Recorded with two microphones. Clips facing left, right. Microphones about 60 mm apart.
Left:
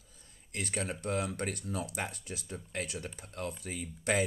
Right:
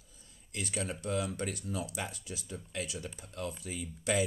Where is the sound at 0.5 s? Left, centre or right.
Left.